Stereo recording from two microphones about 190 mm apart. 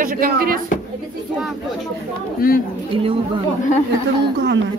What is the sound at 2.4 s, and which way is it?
Speech, 50° left (ahead or behind).